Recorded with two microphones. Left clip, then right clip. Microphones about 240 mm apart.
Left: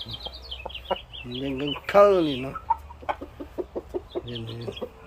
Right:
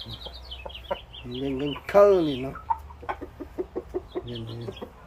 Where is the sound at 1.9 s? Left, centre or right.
Centre.